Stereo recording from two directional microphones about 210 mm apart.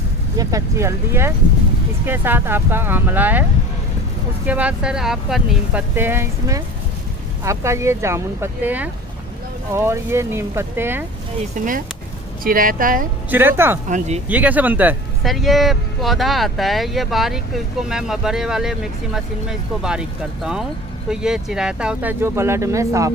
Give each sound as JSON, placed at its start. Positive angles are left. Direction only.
{"t": 0.4, "sound": "speech", "side_deg": -15}
{"t": 4.5, "sound": "speech", "side_deg": -5}
{"t": 11.5, "sound": "speech", "side_deg": -40}
{"t": 13.3, "sound": "speech", "side_deg": -10}
{"t": 13.8, "sound": "speech", "side_deg": -35}
{"t": 14.3, "sound": "speech", "side_deg": -5}